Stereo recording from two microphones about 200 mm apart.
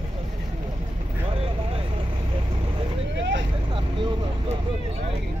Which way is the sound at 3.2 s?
65° right (ahead or behind).